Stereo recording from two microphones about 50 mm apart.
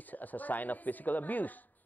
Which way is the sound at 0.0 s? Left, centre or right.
Left.